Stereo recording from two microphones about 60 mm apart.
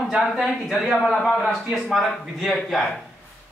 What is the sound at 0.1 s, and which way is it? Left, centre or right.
Speech, centre.